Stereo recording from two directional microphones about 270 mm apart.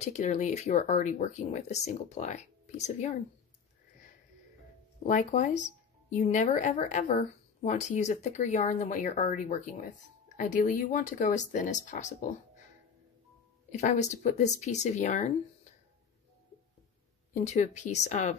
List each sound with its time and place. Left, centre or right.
0.0 s speech: left
5.0 s speech: left
13.7 s speech: left
17.3 s speech: left